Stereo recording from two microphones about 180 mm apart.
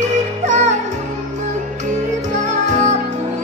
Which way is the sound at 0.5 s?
40° right (ahead or behind).